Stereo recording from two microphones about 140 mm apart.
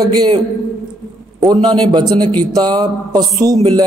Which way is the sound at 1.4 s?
30° right (ahead or behind).